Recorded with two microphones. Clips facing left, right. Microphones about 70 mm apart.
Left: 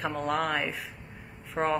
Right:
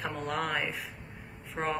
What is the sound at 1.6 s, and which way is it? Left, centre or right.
Speech, left.